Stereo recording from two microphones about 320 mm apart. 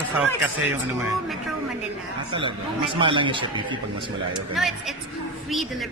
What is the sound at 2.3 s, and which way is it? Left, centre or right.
Speech, centre.